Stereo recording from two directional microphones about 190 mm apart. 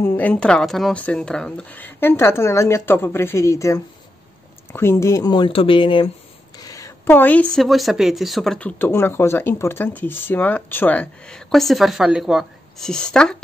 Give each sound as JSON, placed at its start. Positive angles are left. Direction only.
{"t": 0.0, "sound": "speech", "side_deg": 10}